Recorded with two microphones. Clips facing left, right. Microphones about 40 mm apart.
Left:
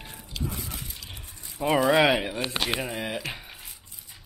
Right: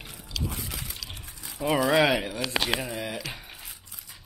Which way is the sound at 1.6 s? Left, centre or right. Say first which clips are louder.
Left 2 dB; centre.